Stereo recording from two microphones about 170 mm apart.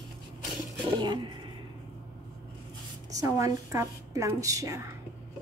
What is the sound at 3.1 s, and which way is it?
A woman's voice, 20° right (ahead or behind).